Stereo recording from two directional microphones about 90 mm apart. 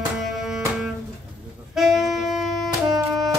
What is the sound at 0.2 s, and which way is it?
Music, 5° right (ahead or behind).